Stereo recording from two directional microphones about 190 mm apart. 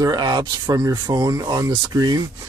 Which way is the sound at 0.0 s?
20° right (ahead or behind).